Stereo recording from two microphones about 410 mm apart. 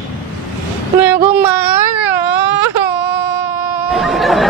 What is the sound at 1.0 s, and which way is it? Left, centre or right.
Speech, centre.